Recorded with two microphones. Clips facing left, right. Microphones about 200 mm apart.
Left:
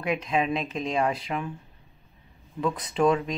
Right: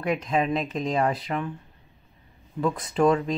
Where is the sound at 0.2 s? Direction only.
Centre (ahead or behind).